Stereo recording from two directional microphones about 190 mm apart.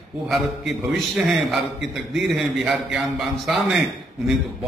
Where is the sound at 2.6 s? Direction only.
Centre (ahead or behind).